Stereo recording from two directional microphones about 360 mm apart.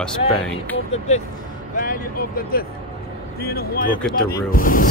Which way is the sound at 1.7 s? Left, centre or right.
Left.